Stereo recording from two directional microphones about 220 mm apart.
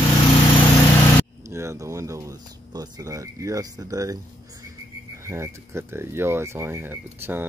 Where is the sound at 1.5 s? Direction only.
15° right (ahead or behind).